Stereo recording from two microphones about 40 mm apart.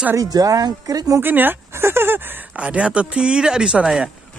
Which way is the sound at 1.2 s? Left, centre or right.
Right.